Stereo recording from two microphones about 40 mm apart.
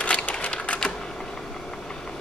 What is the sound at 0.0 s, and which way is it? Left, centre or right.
Typewriter, left.